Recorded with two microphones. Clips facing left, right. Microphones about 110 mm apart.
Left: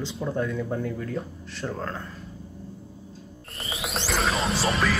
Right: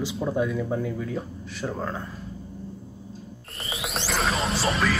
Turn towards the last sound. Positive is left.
turn(degrees=0)  # may be behind; listen again after turning